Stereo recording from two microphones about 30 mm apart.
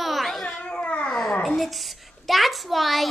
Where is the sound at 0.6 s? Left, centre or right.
Left.